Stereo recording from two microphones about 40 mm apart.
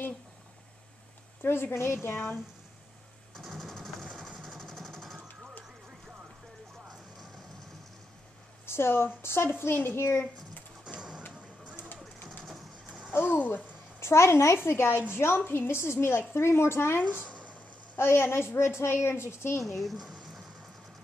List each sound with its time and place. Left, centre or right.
1.4 s speech: left
2.0 s speech: left
3.6 s vehicle: centre
4.6 s jackhammer: centre
8.6 s a woman's voice: left
10.9 s music: right
12.4 s bird: centre
13.1 s speech: left
13.9 s a woman's voice: left
19.6 s speech: centre